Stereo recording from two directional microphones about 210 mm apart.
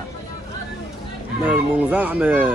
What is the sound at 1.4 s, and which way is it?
A man's voice, 5° right (ahead or behind).